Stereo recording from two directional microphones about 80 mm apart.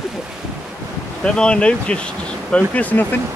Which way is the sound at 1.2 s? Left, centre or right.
Centre.